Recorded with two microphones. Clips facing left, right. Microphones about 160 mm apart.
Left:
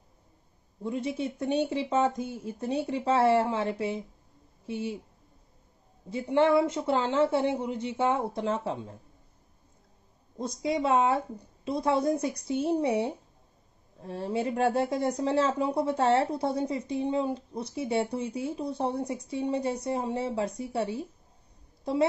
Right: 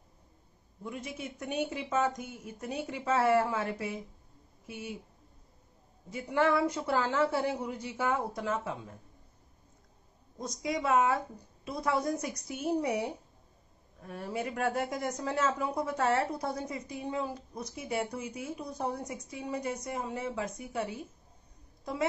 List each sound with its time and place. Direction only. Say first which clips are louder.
0.8 s speech: left 9 dB; 30° left (ahead or behind)
6.0 s speech: left 5 dB; 30° left (ahead or behind)
10.3 s speech: left 5 dB; 30° left (ahead or behind)